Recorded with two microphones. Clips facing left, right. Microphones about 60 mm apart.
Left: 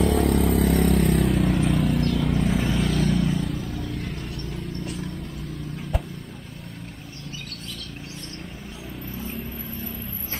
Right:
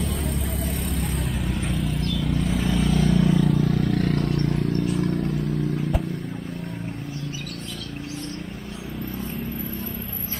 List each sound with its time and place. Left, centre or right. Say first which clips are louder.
0.0 s vehicle: left 8 dB; left
1.2 s vehicle: left 6 dB; centre
2.0 s vehicle: left 4 dB; left
2.2 s vehicle: left 1 dB; centre
3.3 s vehicle: right 8 dB; right